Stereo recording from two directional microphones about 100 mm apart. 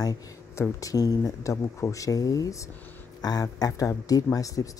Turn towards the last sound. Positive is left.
turn(degrees=35)  # may be behind; listen again after turning